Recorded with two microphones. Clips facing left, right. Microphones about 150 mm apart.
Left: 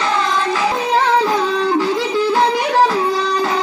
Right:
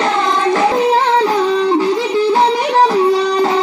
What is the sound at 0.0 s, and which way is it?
Music, 50° right (ahead or behind).